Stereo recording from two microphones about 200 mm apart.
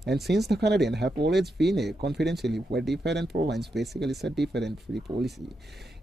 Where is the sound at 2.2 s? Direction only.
55° right (ahead or behind).